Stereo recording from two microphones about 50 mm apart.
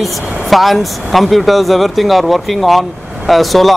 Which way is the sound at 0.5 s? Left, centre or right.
Centre.